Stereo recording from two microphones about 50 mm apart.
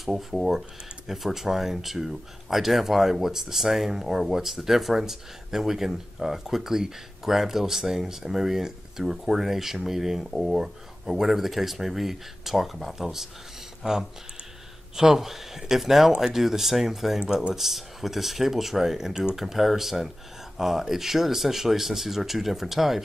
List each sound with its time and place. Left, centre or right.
0.0 s speech: centre
15.0 s speech: centre
17.2 s speech: centre
17.6 s speech: centre